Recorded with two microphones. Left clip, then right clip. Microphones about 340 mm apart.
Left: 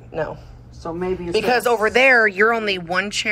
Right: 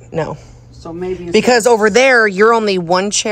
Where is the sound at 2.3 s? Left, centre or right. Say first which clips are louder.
Right 6 dB; centre.